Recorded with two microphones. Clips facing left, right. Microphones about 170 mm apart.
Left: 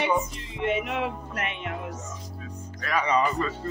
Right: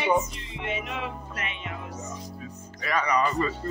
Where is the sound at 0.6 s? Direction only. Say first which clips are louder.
Left 6 dB; 60° left (ahead or behind).